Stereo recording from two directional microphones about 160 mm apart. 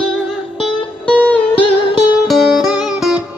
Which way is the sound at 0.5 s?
Centre (ahead or behind).